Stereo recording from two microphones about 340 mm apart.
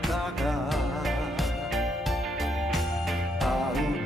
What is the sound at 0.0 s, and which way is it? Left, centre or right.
Music, centre.